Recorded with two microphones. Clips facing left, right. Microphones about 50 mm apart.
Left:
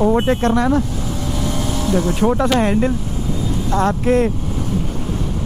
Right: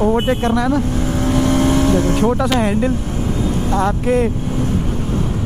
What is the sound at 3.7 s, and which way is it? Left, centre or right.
Speech, right.